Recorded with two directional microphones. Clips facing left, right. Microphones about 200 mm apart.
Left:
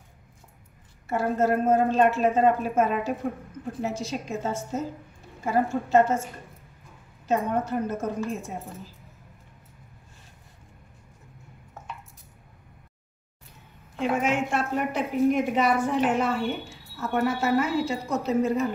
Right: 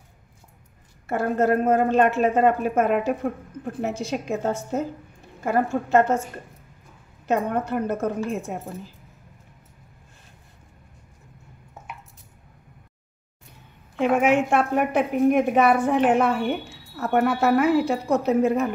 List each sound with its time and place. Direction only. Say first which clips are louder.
1.0 s a woman's voice: right 2 dB; 60° right (ahead or behind)
7.2 s a woman's voice: right 2 dB; 60° right (ahead or behind)
13.9 s a woman's voice: right 6 dB; 60° right (ahead or behind)